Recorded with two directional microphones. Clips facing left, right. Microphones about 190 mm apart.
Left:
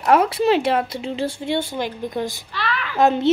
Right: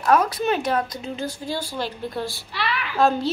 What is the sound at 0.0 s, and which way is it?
A woman's voice, 25° left (ahead or behind).